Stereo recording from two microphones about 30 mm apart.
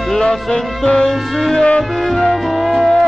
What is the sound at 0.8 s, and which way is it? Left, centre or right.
Music, left.